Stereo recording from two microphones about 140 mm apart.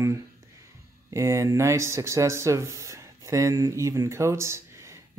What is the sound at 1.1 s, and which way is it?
Speech, 20° right (ahead or behind).